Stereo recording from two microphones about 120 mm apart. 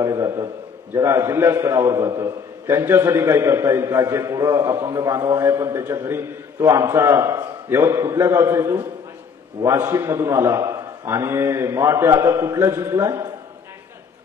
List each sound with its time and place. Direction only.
0.0 s a man's voice: 25° right (ahead or behind)